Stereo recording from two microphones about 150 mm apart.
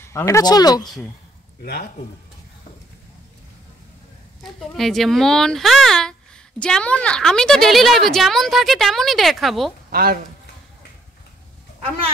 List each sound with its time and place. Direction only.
0.0 s speech: 20° left (ahead or behind)
1.6 s speech: 80° left
4.4 s a woman's voice: centre (ahead or behind)
9.8 s speech: 80° right